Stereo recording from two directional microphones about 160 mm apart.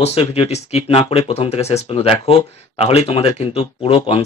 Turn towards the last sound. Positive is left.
turn(degrees=35)  # may be behind; listen again after turning